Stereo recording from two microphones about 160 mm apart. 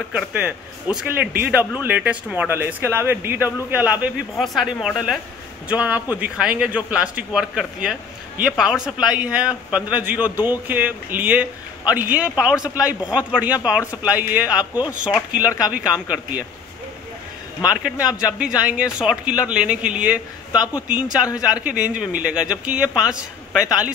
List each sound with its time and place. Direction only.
0.1 s a man's voice: 10° right (ahead or behind)
14.4 s speech: 25° left (ahead or behind)
15.1 s a man's voice: 10° right (ahead or behind)
17.6 s a woman's voice: 5° right (ahead or behind)